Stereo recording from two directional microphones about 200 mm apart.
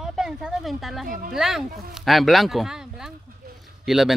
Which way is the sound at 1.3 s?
Centre (ahead or behind).